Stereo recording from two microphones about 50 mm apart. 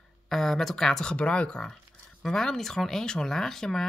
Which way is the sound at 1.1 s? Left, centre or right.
Left.